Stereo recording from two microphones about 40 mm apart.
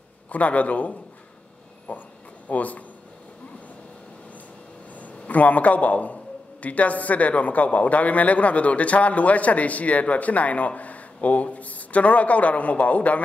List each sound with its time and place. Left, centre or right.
0.3 s a man's voice: left
1.9 s a sound: left
4.9 s a man's voice: left